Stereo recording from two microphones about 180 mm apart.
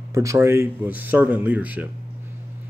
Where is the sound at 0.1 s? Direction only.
15° right (ahead or behind).